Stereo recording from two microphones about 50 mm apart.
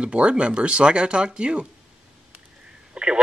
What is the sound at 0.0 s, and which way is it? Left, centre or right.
Speech, right.